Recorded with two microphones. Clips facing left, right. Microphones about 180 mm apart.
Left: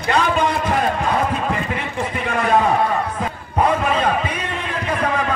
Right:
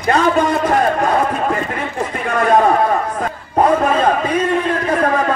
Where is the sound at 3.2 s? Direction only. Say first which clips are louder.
Right 5 dB; 45° right (ahead or behind).